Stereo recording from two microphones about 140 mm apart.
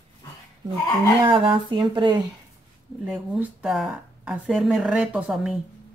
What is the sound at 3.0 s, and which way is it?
Speech, 5° right (ahead or behind).